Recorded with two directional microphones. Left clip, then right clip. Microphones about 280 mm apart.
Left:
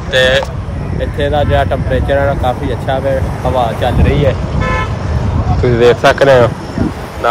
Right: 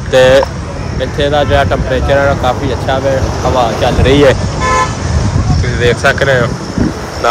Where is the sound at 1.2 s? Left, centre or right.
Centre.